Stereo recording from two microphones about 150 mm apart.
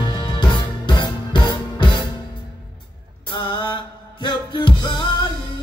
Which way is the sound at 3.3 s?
30° left (ahead or behind).